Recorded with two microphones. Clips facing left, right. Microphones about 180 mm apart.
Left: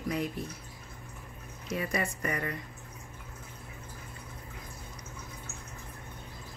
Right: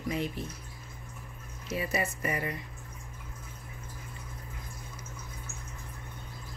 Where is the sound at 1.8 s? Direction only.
5° right (ahead or behind).